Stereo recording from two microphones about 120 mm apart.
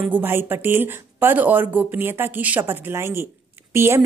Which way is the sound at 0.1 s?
20° right (ahead or behind).